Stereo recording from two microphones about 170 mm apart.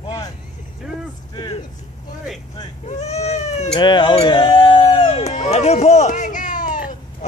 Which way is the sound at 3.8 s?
25° left (ahead or behind).